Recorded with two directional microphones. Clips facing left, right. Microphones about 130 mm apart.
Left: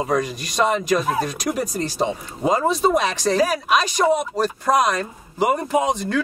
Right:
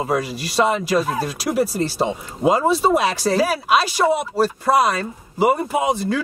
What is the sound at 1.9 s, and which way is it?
Speech, 5° right (ahead or behind).